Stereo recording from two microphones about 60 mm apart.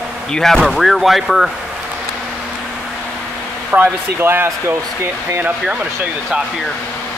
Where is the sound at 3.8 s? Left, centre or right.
Right.